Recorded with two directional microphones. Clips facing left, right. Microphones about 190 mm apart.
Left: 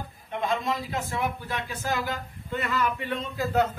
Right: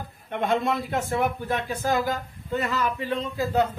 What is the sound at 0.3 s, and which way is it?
A man's voice, 60° right (ahead or behind).